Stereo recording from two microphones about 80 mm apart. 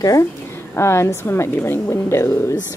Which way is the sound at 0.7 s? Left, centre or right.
Left.